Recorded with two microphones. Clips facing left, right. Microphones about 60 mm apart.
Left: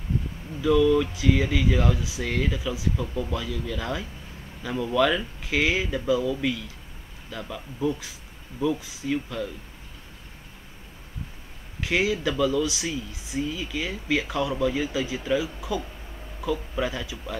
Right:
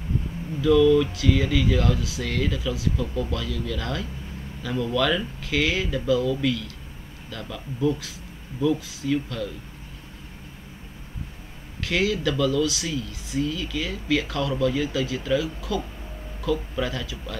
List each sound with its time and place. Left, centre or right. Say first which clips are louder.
0.6 s speech: right 3 dB; centre
11.8 s speech: right 1 dB; centre